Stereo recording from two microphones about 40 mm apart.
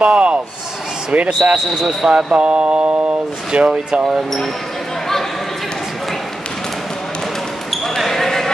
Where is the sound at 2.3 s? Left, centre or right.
Right.